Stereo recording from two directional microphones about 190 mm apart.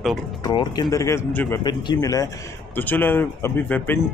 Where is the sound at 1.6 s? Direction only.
25° left (ahead or behind).